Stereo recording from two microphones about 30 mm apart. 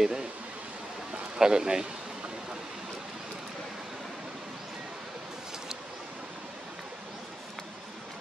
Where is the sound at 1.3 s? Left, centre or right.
Right.